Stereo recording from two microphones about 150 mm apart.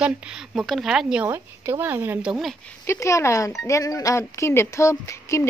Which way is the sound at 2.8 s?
20° left (ahead or behind).